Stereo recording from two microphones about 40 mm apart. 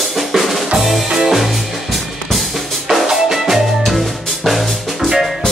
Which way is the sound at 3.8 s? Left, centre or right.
Centre.